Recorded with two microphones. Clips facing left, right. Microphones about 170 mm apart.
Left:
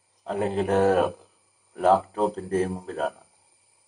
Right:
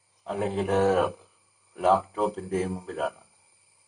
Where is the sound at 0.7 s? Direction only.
15° left (ahead or behind).